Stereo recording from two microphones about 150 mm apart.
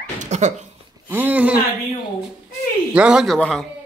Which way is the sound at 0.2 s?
50° right (ahead or behind).